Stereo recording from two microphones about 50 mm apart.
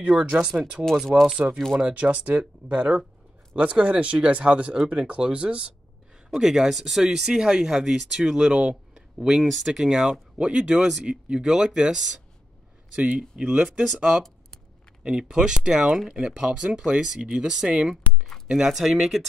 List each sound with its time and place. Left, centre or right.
0.0 s speech: right
6.3 s speech: centre
9.5 s speech: centre
10.3 s speech: centre
11.1 s speech: centre
13.4 s speech: centre
15.0 s speech: centre